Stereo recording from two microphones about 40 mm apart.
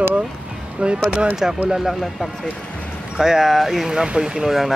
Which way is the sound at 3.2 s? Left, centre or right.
Centre.